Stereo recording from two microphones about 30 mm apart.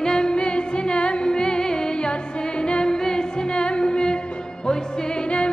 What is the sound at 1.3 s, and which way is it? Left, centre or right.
Music, left.